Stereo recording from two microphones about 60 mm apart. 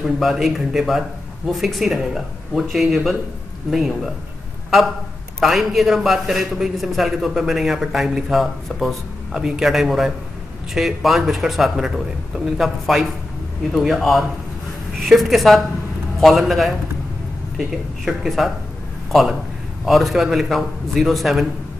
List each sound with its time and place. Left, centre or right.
0.0 s a man's voice: centre
5.4 s a man's voice: centre
19.8 s a man's voice: centre